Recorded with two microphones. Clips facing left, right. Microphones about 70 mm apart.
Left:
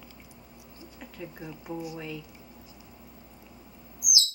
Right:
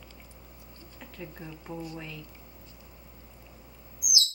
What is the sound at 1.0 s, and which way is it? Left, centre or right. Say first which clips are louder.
Speech: left 2 dB; centre.